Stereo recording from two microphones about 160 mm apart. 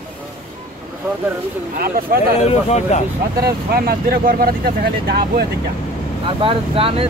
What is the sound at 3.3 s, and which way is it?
Speech, 70° right (ahead or behind).